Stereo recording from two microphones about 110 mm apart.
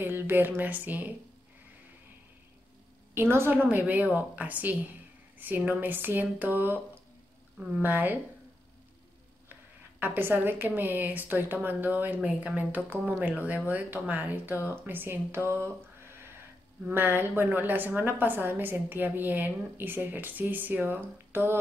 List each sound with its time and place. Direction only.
0.0 s a woman's voice: 20° right (ahead or behind)
3.2 s a woman's voice: 20° right (ahead or behind)
9.9 s a woman's voice: 20° right (ahead or behind)
16.9 s a woman's voice: 20° right (ahead or behind)